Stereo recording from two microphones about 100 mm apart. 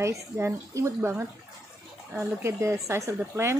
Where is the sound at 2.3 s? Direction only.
25° right (ahead or behind).